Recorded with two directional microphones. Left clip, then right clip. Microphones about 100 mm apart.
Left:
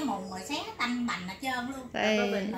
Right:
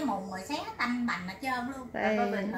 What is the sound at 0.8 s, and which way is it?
Speech, 5° left (ahead or behind).